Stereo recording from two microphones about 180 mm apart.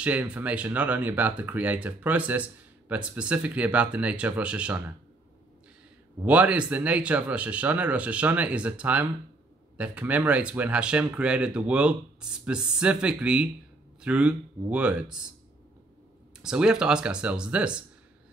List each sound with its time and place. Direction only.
0.0 s speech: 10° right (ahead or behind)
6.2 s speech: 5° right (ahead or behind)
16.3 s speech: 5° right (ahead or behind)